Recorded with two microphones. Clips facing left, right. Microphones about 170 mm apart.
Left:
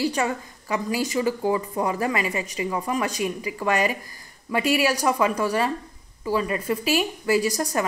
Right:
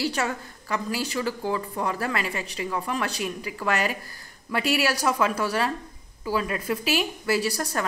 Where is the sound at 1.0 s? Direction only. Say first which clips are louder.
Left 5 dB; 15° left (ahead or behind).